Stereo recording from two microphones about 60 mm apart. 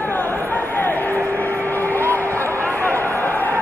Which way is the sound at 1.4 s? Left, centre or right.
Left.